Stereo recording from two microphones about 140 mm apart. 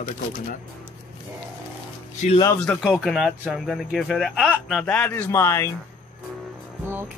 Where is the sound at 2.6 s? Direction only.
10° left (ahead or behind).